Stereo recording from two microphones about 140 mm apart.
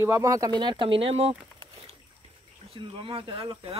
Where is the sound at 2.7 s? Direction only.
40° right (ahead or behind).